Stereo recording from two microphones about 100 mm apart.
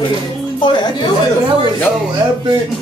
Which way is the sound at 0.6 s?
50° left (ahead or behind).